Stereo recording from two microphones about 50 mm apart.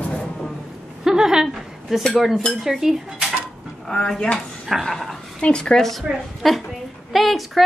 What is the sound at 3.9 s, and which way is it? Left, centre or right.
Speech, centre.